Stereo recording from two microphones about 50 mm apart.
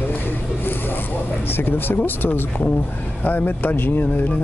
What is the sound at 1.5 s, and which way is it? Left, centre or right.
Speech, left.